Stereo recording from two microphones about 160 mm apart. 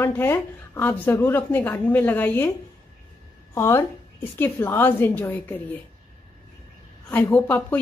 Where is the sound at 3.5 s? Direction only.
15° left (ahead or behind).